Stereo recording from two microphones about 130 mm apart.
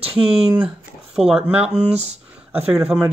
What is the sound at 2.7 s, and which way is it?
Speech, 5° right (ahead or behind).